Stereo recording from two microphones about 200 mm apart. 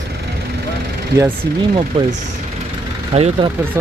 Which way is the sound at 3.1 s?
30° right (ahead or behind).